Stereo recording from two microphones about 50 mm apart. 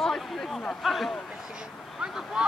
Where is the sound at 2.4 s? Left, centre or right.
Centre.